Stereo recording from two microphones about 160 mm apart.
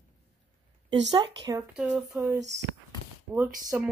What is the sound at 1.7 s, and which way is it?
Speech, 5° right (ahead or behind).